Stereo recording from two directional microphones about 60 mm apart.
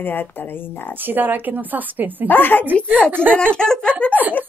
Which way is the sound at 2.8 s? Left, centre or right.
Right.